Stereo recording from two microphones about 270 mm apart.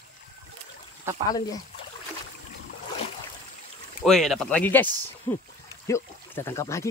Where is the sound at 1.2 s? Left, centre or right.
Centre.